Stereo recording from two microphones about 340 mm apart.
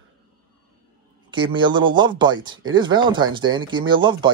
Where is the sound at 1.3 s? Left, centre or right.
Centre.